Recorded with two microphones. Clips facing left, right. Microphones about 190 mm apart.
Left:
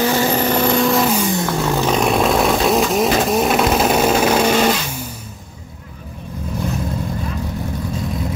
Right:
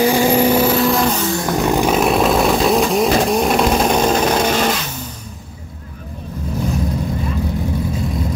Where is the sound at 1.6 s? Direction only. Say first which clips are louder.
Right 3 dB; 10° right (ahead or behind); by 4.5 s 10° left (ahead or behind).